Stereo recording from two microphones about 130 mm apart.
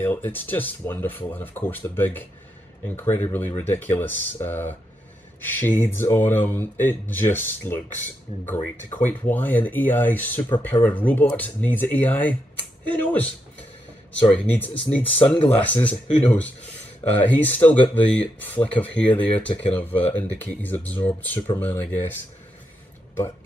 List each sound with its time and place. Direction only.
0.0 s speech: 15° left (ahead or behind)